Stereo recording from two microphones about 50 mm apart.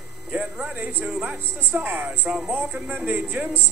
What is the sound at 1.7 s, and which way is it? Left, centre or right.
Speech, right.